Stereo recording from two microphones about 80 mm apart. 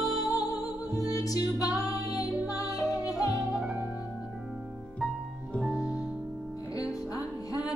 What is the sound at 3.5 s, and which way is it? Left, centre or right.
Music, centre.